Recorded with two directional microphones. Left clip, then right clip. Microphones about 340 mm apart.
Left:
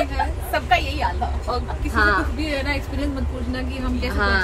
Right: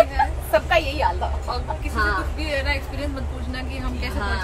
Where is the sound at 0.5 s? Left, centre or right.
Centre.